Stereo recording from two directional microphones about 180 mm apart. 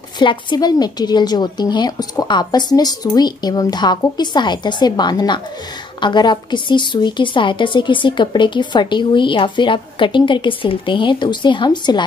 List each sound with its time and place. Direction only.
0.2 s a woman's voice: 25° left (ahead or behind)